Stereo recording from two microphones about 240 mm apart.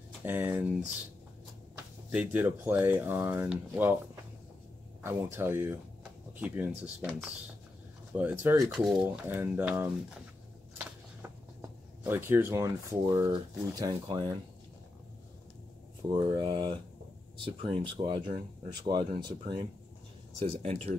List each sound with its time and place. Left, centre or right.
0.2 s speech: centre
2.0 s speech: centre
12.0 s speech: centre
16.1 s speech: centre